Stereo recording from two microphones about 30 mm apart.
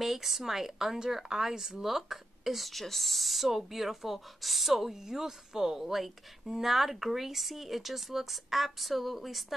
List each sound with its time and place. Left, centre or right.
0.0 s a woman's voice: centre